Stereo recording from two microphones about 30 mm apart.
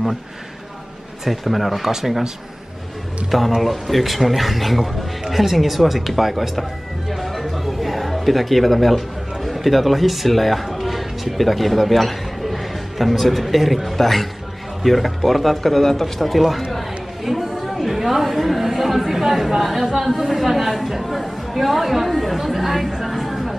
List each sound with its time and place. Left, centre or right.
1.2 s speech: centre
1.9 s speech: centre
3.3 s speech: centre
7.1 s music: centre
14.8 s speech: centre
16.7 s chatter: centre
20.0 s speech: centre
22.9 s chatter: centre